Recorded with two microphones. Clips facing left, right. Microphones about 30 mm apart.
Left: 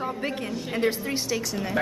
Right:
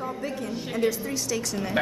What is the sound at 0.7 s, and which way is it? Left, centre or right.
Speech, left.